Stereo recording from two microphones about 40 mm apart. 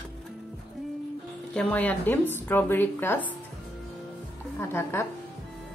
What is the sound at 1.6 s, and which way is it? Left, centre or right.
A woman's voice, left.